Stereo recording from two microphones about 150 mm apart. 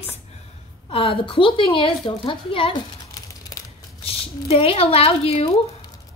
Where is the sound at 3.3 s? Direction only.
25° left (ahead or behind).